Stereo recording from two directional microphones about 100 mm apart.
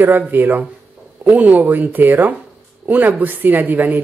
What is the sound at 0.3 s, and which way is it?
Speech, 20° right (ahead or behind).